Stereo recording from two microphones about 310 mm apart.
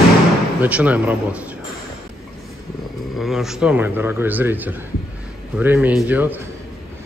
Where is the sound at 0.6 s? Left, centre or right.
Centre.